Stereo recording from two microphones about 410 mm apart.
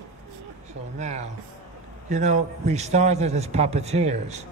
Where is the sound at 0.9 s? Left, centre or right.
Centre.